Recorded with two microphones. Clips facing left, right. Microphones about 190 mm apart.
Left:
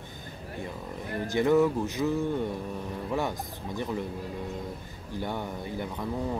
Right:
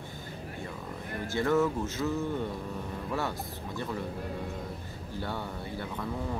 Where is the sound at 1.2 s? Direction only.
15° left (ahead or behind).